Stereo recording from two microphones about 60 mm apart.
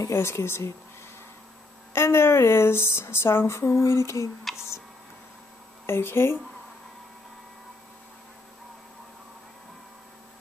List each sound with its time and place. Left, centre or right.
0.1 s speech: left
2.0 s speech: left
5.9 s speech: left